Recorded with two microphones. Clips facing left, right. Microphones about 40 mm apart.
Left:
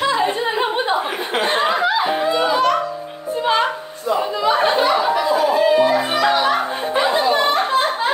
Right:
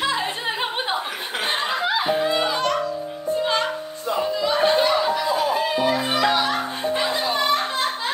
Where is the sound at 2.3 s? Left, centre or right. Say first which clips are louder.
Left 5 dB; centre.